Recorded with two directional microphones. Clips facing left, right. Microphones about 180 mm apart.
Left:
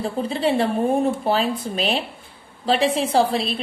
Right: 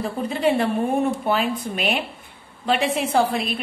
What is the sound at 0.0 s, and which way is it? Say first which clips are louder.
A woman's voice: even; 30° left (ahead or behind).